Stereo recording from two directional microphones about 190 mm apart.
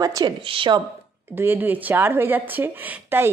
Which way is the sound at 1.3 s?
10° right (ahead or behind).